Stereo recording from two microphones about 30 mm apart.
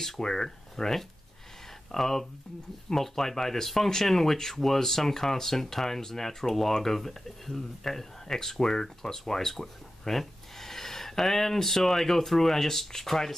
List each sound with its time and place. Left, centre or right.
0.2 s speech: centre